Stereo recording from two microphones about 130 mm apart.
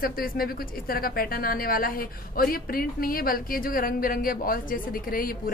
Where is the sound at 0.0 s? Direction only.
90° left.